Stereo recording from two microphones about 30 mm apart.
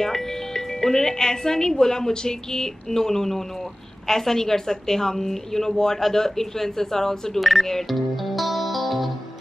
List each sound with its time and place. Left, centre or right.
0.0 s a woman's voice: centre
7.3 s speech: centre
7.9 s music: centre